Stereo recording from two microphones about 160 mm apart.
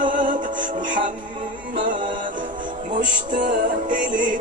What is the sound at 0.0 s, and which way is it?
Music, 55° right (ahead or behind).